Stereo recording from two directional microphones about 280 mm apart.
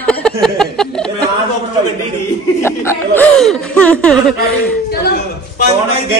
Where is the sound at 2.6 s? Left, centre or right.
Centre.